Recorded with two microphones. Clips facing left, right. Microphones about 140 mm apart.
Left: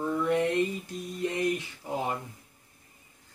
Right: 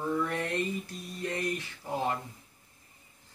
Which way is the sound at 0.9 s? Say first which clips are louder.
Left 4 dB; 20° left (ahead or behind).